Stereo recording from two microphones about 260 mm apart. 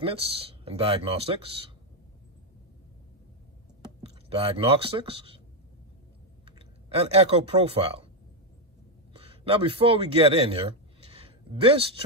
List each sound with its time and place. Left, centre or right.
0.0 s speech: right
3.8 s speech: right
6.9 s speech: right
9.1 s a man's voice: right